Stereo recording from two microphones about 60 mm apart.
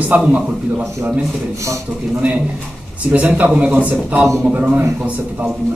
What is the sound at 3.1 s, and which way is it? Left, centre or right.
A man's voice, right.